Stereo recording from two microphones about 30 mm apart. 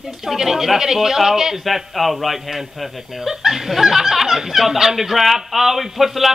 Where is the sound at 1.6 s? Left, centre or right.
Centre.